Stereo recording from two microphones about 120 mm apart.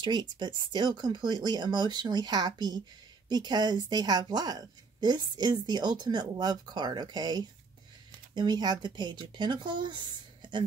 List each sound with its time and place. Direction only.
0.0 s a woman's voice: 40° right (ahead or behind)